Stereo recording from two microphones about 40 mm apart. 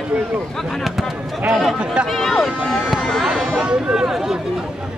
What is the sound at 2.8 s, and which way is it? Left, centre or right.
Speech, centre.